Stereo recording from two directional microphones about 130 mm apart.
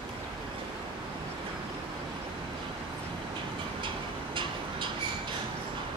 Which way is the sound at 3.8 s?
40° right (ahead or behind).